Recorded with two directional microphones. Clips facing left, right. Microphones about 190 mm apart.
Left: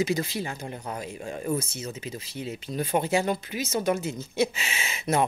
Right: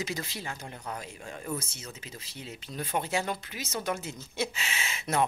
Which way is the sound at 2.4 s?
10° left (ahead or behind).